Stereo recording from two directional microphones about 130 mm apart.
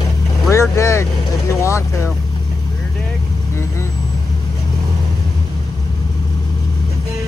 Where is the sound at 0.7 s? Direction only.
20° left (ahead or behind).